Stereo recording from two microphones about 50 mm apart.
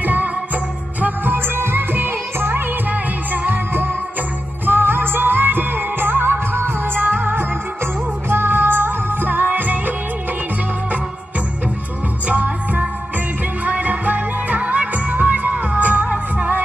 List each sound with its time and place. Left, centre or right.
0.0 s music: right
12.3 s music: right